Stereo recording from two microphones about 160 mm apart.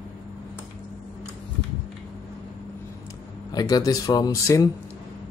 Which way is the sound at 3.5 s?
25° left (ahead or behind).